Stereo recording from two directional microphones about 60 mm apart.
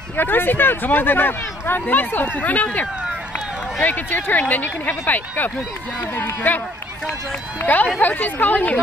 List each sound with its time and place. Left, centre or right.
0.2 s speech: left
7.6 s speech: left